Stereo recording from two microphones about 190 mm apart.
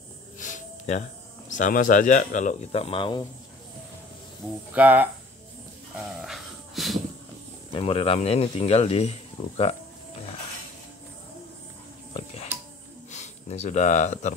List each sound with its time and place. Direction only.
0.4 s music: 40° left (ahead or behind)
1.5 s speech: 45° left (ahead or behind); by 3.3 s 25° left (ahead or behind)
4.7 s speech: 10° right (ahead or behind)
6.0 s dog: centre (ahead or behind)
7.7 s speech: 30° left (ahead or behind)
12.1 s music: 30° left (ahead or behind)
13.1 s speech: 35° left (ahead or behind)